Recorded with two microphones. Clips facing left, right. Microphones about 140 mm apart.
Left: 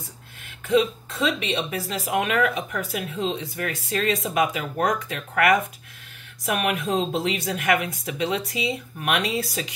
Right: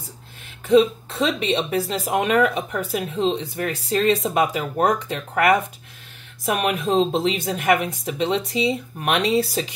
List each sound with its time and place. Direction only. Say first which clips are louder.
0.7 s speech: right 5 dB; 30° right (ahead or behind)